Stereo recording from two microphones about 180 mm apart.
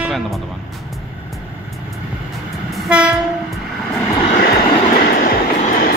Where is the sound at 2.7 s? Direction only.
5° right (ahead or behind).